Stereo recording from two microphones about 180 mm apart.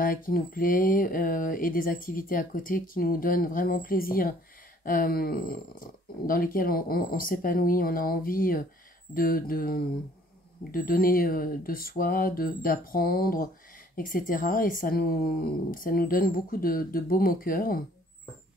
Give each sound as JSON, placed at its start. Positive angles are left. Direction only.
{"t": 0.0, "sound": "speech", "side_deg": 50}